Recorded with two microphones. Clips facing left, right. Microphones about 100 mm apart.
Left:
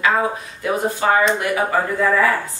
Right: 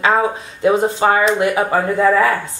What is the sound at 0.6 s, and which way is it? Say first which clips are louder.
Speech: right 7 dB; 25° right (ahead or behind).